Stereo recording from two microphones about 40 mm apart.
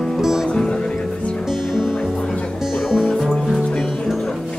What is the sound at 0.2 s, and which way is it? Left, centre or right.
Music, centre.